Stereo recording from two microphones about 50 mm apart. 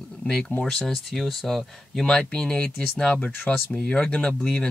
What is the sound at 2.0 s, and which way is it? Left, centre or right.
Speech, centre.